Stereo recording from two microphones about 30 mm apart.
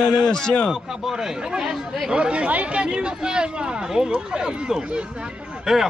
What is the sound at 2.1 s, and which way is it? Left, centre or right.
Speech, right.